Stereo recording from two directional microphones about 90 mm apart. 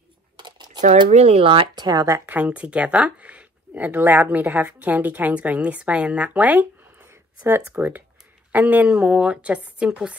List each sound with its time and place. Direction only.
0.4 s crumpling: 55° right (ahead or behind)
1.4 s speech: 75° right (ahead or behind)
1.9 s a woman's voice: 40° right (ahead or behind)
2.2 s speech: 15° right (ahead or behind)
7.7 s speech: 20° right (ahead or behind)